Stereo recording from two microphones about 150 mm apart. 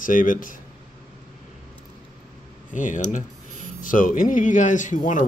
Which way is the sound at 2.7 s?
60° left (ahead or behind).